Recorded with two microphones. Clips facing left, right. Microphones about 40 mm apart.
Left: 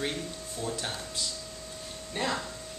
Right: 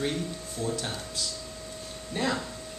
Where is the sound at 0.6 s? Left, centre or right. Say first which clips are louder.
Right 2 dB; centre.